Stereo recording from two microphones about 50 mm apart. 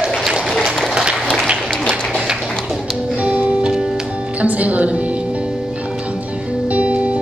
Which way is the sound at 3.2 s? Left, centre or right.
Right.